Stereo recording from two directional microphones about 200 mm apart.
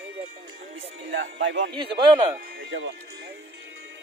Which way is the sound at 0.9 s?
70° right (ahead or behind).